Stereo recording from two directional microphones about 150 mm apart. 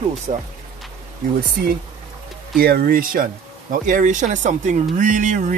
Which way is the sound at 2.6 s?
75° right (ahead or behind).